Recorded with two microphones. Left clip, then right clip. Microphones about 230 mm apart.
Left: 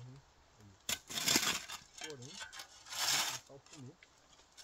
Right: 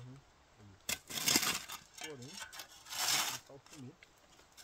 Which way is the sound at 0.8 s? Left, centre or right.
Centre.